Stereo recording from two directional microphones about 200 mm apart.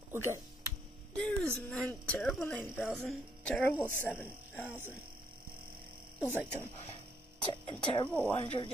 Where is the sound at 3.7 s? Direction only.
10° right (ahead or behind).